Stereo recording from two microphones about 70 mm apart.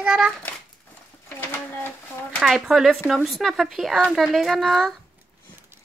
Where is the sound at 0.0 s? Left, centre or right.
Right.